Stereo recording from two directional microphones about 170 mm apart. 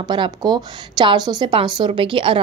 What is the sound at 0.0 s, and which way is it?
A woman's voice, 25° right (ahead or behind).